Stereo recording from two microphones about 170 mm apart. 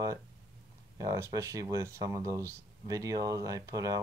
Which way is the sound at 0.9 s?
20° right (ahead or behind).